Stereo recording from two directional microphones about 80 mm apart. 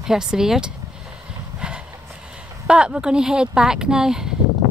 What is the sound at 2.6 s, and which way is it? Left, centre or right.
Speech, centre.